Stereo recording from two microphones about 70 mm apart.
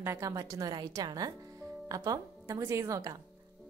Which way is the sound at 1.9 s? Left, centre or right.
Right.